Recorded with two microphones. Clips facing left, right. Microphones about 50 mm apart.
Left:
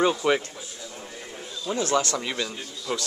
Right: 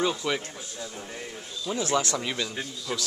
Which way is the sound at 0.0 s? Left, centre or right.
Left.